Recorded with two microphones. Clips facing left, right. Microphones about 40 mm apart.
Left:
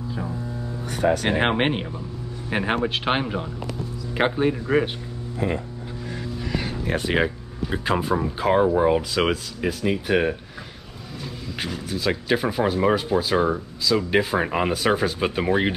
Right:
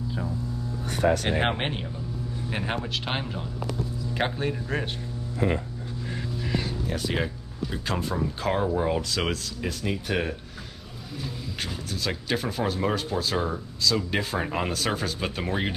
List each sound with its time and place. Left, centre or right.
1.5 s speech: left
6.8 s speech: left; by 10.3 s centre
11.6 s speech: centre